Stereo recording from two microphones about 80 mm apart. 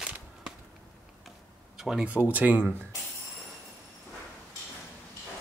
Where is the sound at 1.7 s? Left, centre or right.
Centre.